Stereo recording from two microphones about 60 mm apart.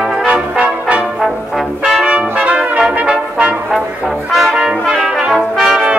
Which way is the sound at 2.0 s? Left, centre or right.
Right.